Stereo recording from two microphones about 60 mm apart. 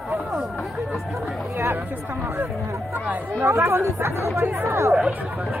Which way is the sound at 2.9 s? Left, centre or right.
Right.